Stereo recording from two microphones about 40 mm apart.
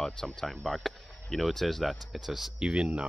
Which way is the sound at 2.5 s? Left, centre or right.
Right.